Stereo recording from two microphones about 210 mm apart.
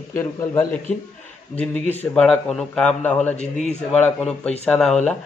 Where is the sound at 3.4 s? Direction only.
30° left (ahead or behind).